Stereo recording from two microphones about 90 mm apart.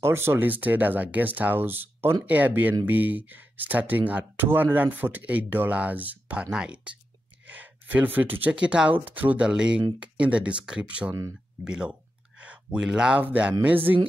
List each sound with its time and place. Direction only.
0.0 s speech: 25° right (ahead or behind)